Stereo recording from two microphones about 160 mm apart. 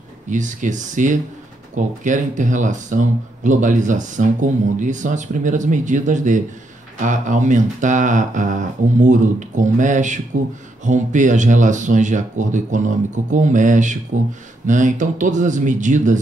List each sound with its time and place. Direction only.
0.3 s speech: 50° right (ahead or behind)